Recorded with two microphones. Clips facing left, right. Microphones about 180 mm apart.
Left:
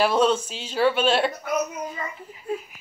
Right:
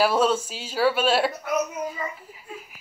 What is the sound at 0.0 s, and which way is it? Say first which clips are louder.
Speech: left 1 dB; 5° right (ahead or behind).